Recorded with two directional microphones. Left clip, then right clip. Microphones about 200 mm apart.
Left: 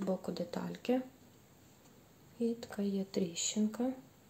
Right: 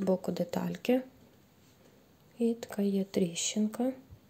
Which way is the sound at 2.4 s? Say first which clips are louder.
Right 5 dB; 35° right (ahead or behind).